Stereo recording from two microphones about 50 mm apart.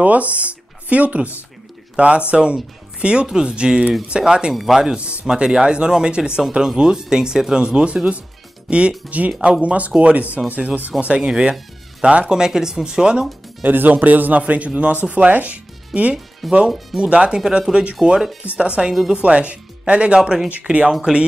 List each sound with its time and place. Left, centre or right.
0.0 s speech: right
11.2 s speech: centre
13.7 s speech: right
14.4 s speech: right
16.4 s speech: centre
17.0 s speech: centre
18.6 s speech: right
20.2 s speech: centre
20.6 s speech: right